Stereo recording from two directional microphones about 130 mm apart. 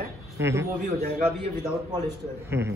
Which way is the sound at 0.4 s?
20° right (ahead or behind).